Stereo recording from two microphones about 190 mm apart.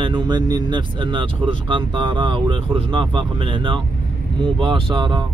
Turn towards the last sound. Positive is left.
turn(degrees=-25)  # may be behind; listen again after turning